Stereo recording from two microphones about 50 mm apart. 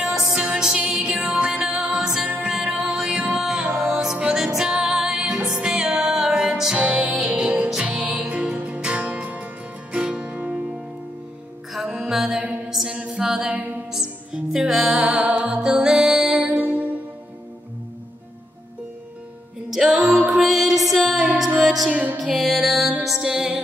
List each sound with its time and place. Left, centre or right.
0.0 s music: centre
5.9 s music: right
6.1 s music: centre
6.8 s music: right
7.7 s music: centre
11.9 s music: centre
12.9 s a capella: centre
13.5 s music: right
13.9 s music: centre
16.4 s music: right
20.0 s music: right
20.2 s music: centre